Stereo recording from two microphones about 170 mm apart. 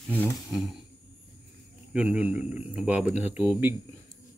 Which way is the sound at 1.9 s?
5° right (ahead or behind).